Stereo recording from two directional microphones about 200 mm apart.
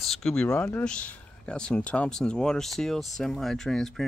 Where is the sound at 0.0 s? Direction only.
Centre (ahead or behind).